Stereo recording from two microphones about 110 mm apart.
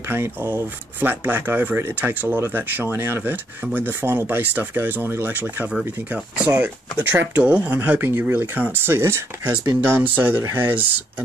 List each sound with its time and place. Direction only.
0.1 s speech: 20° right (ahead or behind)